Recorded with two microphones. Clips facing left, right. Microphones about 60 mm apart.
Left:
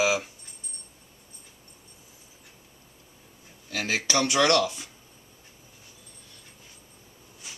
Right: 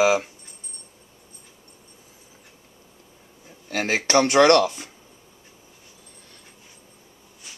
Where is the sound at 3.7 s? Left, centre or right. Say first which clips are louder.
Right 7 dB; right.